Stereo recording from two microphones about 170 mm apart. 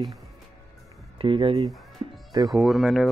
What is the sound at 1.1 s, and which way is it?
Speech, 30° right (ahead or behind).